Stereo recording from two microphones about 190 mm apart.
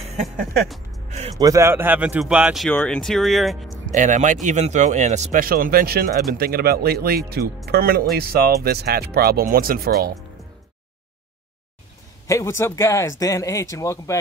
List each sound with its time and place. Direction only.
0.0 s music: 35° right (ahead or behind)
0.7 s music: centre (ahead or behind)
1.4 s speech: 15° right (ahead or behind)
2.7 s speech: 5° left (ahead or behind)
3.7 s speech: 40° right (ahead or behind)
12.3 s speech: 15° left (ahead or behind)